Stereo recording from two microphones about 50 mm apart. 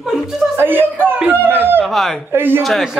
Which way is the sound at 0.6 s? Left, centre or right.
Right.